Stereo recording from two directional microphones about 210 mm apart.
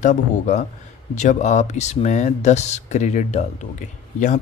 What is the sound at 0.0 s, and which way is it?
Speech, 35° left (ahead or behind).